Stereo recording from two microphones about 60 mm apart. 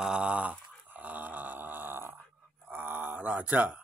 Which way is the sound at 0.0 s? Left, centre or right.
Centre.